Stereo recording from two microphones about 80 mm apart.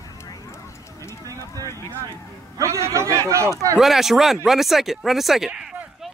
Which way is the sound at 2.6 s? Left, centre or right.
Right.